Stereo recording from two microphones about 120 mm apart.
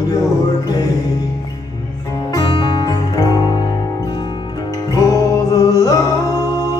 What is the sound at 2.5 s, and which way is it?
Music, 45° left (ahead or behind).